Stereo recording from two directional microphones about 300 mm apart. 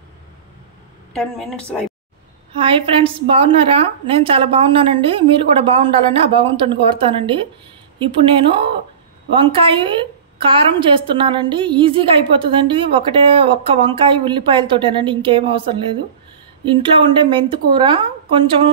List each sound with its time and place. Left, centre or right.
1.1 s speech: centre
2.5 s a woman's voice: centre